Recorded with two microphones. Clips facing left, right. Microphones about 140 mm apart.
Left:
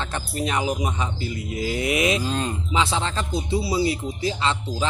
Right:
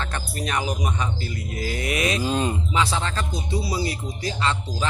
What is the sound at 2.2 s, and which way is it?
Speech, 10° right (ahead or behind).